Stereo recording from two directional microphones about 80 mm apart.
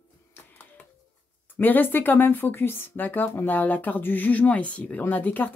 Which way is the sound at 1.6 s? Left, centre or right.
Left.